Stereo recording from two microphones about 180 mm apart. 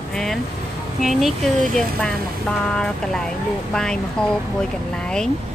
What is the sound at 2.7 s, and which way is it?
Speech, 5° left (ahead or behind).